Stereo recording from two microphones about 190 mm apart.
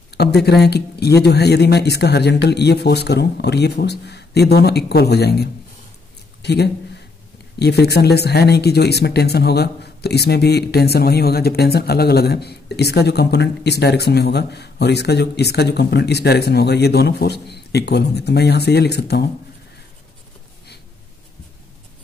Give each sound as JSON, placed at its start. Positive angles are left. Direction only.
{"t": 0.2, "sound": "a man's voice", "side_deg": 60}